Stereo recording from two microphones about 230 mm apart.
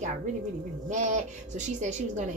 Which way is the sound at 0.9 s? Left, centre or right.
Right.